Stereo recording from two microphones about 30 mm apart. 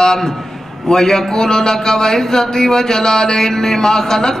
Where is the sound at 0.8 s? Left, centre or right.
Centre.